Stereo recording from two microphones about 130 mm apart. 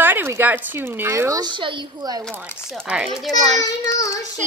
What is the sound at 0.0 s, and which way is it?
A woman's voice, 15° right (ahead or behind).